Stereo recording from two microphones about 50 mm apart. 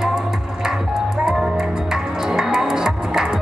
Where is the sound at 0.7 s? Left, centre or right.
Centre.